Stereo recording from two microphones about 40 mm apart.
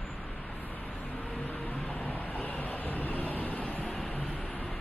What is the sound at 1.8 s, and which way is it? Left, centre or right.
Vehicle, left.